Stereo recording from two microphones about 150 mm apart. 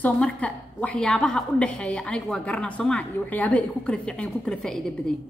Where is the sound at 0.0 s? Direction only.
10° left (ahead or behind).